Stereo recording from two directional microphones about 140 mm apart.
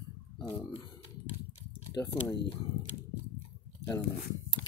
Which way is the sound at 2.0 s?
20° left (ahead or behind).